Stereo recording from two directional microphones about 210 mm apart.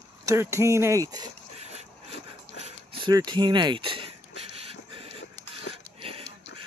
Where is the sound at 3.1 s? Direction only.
20° right (ahead or behind).